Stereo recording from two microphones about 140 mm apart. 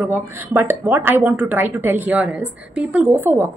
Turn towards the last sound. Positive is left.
turn(degrees=-15)  # may be behind; listen again after turning